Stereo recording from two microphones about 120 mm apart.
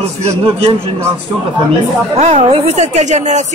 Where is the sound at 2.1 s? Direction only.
65° right (ahead or behind).